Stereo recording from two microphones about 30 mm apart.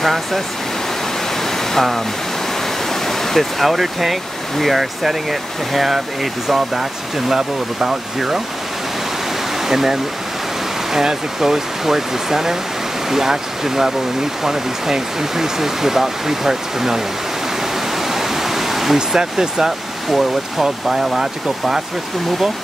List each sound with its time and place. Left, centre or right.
0.0 s speech: centre
1.7 s speech: centre
2.9 s a sound: centre
3.7 s speech: centre
6.7 s speech: centre
9.7 s speech: centre
18.1 s waterfall: centre
18.9 s speech: right
20.1 s speech: centre